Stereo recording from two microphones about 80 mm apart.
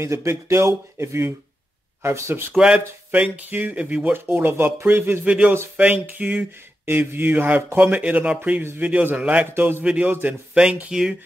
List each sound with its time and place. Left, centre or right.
0.0 s speech: right
2.5 s speech: centre; by 9.8 s right
9.8 s speech: centre